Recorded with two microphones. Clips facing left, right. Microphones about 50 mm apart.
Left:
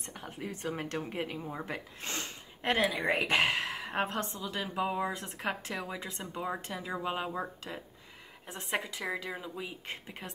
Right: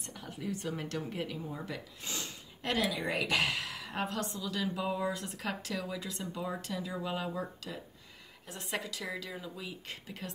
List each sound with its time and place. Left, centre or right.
0.0 s speech: left